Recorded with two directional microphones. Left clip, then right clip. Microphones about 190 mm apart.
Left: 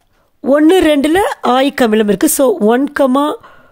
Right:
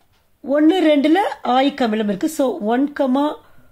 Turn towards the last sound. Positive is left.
turn(degrees=65)  # may be behind; listen again after turning